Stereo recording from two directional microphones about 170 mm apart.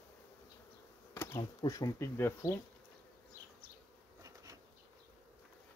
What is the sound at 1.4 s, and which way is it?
Speech, 25° left (ahead or behind).